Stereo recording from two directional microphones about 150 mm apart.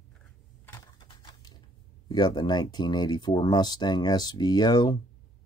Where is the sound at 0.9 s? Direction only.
30° left (ahead or behind).